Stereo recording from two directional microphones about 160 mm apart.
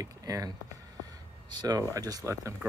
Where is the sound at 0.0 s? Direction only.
20° right (ahead or behind).